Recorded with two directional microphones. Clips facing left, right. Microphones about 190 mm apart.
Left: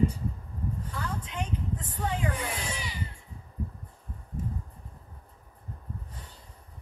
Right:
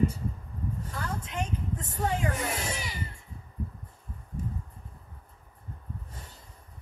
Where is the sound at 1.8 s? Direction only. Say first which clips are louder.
Right 5 dB; 45° right (ahead or behind).